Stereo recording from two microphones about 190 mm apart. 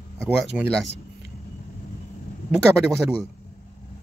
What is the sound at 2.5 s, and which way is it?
Speech, 15° right (ahead or behind).